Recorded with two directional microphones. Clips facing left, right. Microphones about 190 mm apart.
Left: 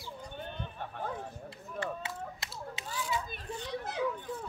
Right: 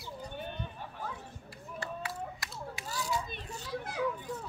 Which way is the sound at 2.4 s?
20° left (ahead or behind).